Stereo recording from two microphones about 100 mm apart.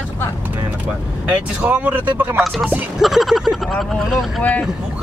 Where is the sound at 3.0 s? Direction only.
Centre (ahead or behind).